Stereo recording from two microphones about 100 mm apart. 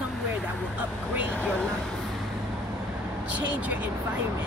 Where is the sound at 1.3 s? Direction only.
15° left (ahead or behind).